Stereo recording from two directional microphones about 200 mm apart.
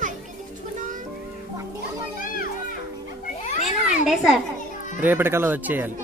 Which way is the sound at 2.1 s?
45° left (ahead or behind).